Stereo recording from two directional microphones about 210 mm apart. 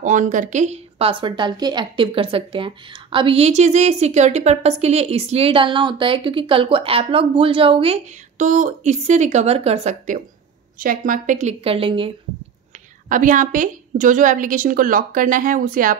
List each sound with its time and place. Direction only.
0.0 s a woman's voice: 35° right (ahead or behind)
13.1 s a woman's voice: 40° right (ahead or behind)